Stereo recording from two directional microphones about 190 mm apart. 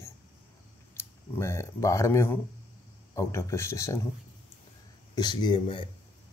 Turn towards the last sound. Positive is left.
turn(degrees=25)  # may be behind; listen again after turning